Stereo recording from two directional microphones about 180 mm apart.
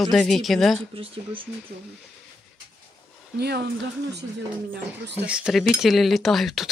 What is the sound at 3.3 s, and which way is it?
Speech, 65° right (ahead or behind).